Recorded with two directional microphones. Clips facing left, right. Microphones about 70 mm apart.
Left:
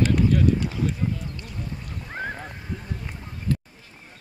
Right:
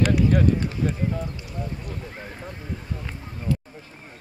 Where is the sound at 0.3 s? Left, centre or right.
Right.